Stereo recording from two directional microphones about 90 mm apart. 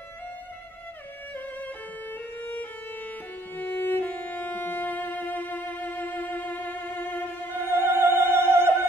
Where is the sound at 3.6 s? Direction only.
20° left (ahead or behind).